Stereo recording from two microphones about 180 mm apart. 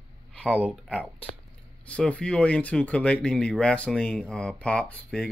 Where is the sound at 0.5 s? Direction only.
10° right (ahead or behind).